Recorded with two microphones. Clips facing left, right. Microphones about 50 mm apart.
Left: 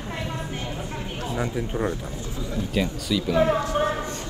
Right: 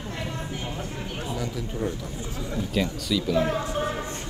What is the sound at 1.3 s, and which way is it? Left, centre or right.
Speech, left.